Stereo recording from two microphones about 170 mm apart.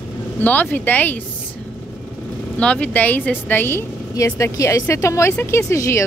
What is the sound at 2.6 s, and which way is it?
Speech, 10° left (ahead or behind).